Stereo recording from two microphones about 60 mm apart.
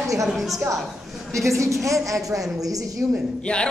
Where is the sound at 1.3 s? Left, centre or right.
Right.